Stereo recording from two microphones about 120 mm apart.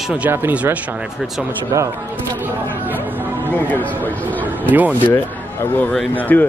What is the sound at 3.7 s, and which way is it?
Speech, 15° left (ahead or behind).